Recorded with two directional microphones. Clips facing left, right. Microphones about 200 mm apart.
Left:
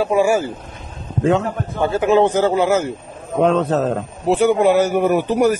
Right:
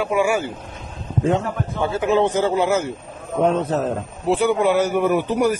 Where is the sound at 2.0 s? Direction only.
45° left (ahead or behind).